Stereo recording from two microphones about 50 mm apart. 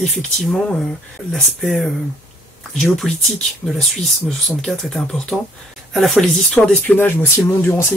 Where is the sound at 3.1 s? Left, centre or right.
Centre.